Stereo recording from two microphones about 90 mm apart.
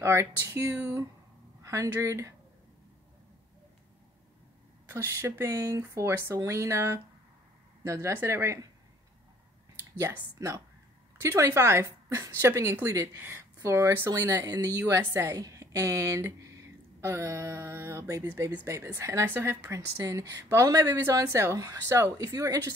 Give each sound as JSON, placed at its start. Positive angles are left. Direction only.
{"t": 0.0, "sound": "speech", "side_deg": -30}
{"t": 4.8, "sound": "speech", "side_deg": -30}
{"t": 10.4, "sound": "speech", "side_deg": -35}
{"t": 14.8, "sound": "a woman's voice", "side_deg": -30}
{"t": 20.0, "sound": "speech", "side_deg": -35}